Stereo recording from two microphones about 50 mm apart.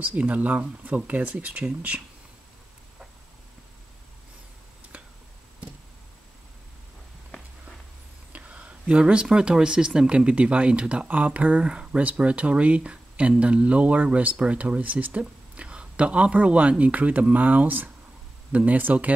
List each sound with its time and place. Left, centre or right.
0.0 s speech: right
4.9 s finger snapping: right
8.3 s speech: right
11.6 s speech: centre